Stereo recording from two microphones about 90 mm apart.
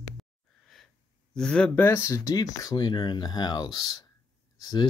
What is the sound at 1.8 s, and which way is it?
Speech, 30° left (ahead or behind).